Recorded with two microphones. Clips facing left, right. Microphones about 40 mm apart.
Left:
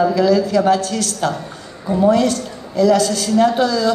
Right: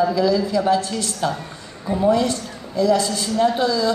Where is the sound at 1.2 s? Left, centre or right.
Centre.